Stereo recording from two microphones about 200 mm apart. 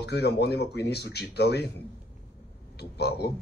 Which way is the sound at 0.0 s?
55° left (ahead or behind).